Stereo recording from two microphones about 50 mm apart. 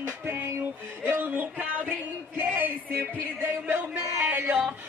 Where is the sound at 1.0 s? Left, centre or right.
Right.